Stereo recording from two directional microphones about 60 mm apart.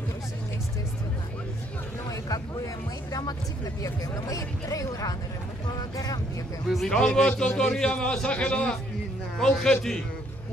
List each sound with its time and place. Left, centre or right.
2.0 s speech: left
6.7 s a man's voice: centre